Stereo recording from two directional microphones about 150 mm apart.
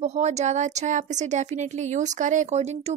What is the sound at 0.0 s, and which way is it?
Speech, 50° right (ahead or behind).